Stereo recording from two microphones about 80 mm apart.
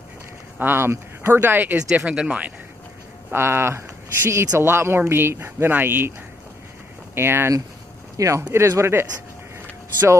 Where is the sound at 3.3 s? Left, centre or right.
Right.